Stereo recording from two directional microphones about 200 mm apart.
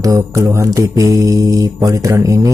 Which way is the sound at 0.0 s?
15° right (ahead or behind).